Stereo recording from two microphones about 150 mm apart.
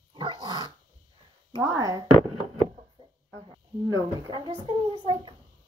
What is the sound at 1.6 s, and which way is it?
Speech, 25° right (ahead or behind).